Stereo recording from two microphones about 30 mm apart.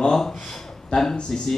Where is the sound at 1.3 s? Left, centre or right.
Centre.